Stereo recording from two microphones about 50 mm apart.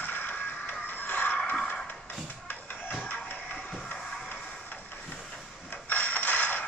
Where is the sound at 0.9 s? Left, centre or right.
Left.